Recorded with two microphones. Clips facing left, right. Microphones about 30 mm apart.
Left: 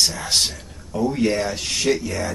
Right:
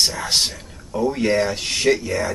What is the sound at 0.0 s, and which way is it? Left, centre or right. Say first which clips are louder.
Speech: right 1 dB; centre.